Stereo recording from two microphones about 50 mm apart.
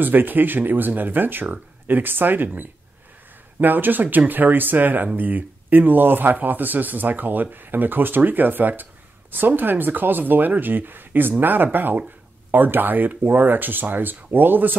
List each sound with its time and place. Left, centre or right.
0.0 s speech: right